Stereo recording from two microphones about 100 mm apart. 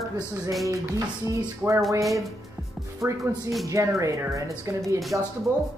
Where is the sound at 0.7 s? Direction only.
35° right (ahead or behind).